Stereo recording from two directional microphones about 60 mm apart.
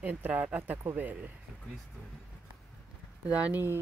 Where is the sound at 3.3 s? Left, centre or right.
Right.